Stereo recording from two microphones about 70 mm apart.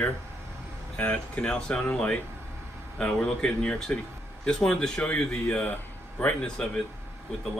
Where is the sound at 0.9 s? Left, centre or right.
Centre.